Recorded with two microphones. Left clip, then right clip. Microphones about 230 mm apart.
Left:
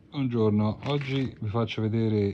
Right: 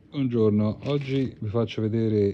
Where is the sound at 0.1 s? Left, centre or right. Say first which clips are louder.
Right 3 dB; centre.